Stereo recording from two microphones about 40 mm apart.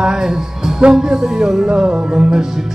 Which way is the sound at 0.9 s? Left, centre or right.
Centre.